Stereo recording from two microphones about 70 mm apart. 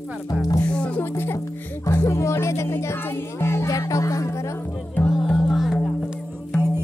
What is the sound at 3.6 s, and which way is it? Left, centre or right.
Music, left.